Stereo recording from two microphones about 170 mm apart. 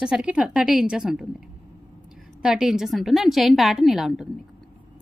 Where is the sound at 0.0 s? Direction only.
5° right (ahead or behind).